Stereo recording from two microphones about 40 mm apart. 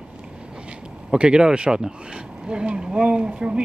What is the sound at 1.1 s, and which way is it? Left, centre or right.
Speech, right.